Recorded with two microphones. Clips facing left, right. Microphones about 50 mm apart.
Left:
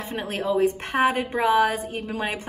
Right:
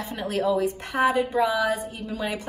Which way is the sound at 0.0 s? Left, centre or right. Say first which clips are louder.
Right 2 dB; left.